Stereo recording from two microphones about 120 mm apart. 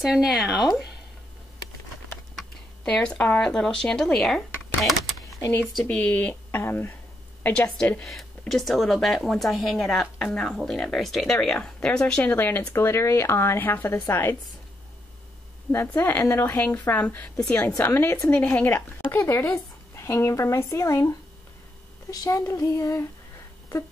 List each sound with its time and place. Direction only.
0.0 s speech: centre (ahead or behind)
2.3 s speech: 10° left (ahead or behind)
4.8 s typing: centre (ahead or behind)
5.7 s speech: 5° left (ahead or behind)
15.7 s speech: 20° left (ahead or behind)
22.1 s speech: 30° left (ahead or behind)